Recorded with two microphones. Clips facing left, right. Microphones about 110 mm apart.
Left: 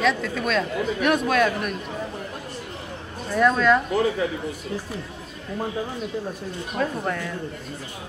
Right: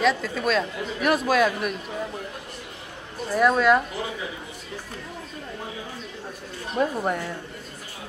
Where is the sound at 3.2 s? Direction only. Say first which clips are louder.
Even; 5° right (ahead or behind).